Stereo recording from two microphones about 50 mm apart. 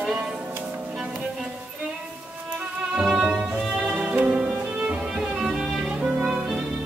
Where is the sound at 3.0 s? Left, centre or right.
Centre.